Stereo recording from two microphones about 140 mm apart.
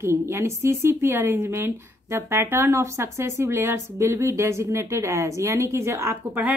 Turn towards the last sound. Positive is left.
turn(degrees=-15)  # may be behind; listen again after turning